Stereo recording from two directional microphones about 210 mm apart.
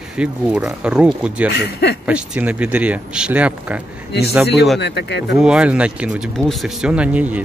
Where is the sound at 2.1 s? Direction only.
5° right (ahead or behind).